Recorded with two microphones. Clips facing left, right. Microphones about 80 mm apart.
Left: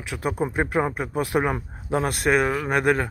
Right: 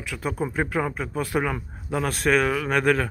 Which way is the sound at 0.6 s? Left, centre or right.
Left.